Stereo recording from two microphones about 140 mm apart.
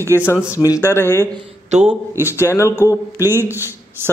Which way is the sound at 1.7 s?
55° right (ahead or behind).